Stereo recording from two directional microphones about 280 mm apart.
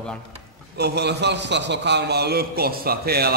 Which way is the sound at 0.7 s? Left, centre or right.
Right.